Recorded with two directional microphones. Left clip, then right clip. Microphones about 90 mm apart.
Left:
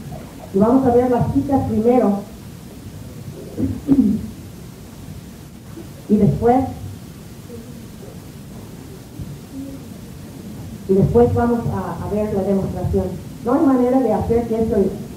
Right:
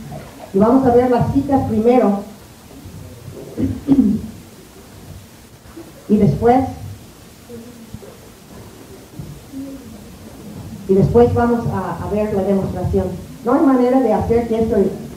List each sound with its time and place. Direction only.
0.6 s speech: 25° right (ahead or behind)
3.9 s speech: 20° right (ahead or behind)
6.1 s speech: 20° right (ahead or behind)
11.0 s speech: 25° right (ahead or behind)